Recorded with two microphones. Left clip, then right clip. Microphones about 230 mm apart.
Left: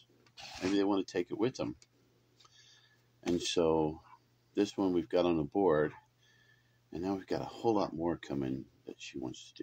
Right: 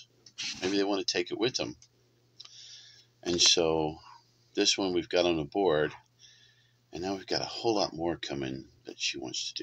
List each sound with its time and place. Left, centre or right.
0.6 s speech: left
3.2 s speech: left
6.9 s speech: left